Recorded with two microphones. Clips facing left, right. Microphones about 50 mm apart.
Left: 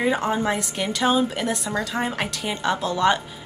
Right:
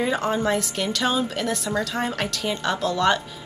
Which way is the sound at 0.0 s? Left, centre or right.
Centre.